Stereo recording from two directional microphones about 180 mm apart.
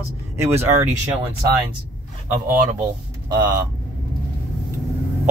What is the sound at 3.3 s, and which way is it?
Speech, 25° right (ahead or behind).